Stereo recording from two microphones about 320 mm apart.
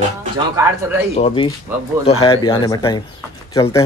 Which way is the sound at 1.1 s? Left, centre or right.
Centre.